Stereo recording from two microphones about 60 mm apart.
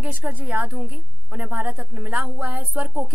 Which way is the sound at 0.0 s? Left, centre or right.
Right.